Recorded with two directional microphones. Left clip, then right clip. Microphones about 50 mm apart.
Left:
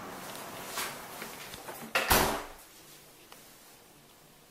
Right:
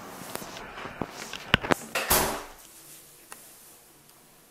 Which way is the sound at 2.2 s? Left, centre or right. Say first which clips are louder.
Right 1 dB; centre.